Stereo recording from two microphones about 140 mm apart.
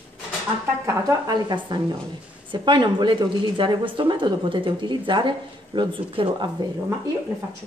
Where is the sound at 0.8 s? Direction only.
25° right (ahead or behind).